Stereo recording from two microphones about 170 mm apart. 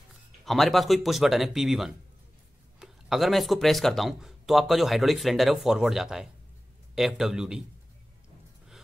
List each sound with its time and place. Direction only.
0.5 s speech: centre (ahead or behind)